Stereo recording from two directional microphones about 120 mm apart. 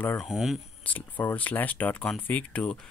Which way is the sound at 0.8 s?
15° left (ahead or behind).